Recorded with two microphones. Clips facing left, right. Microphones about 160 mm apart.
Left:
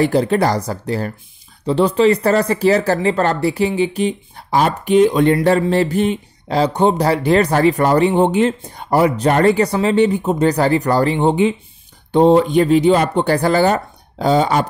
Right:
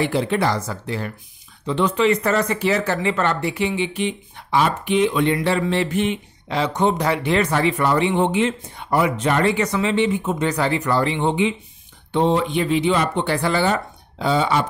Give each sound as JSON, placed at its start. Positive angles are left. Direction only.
{"t": 0.0, "sound": "speech", "side_deg": 40}